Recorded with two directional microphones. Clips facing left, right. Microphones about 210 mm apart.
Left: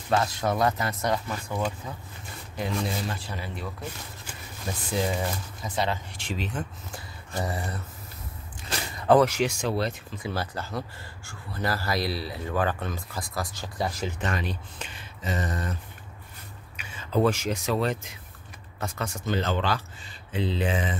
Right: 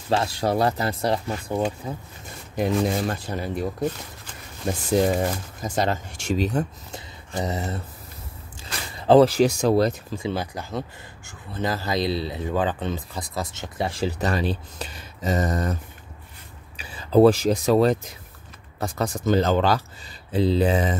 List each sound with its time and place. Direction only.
0.1 s speech: 30° right (ahead or behind)
2.5 s speech: 45° right (ahead or behind)
4.9 s speech: 45° right (ahead or behind)
6.9 s a sound: 20° right (ahead or behind)
8.9 s speech: 30° right (ahead or behind)
10.1 s speech: 20° right (ahead or behind); by 20.9 s 40° right (ahead or behind)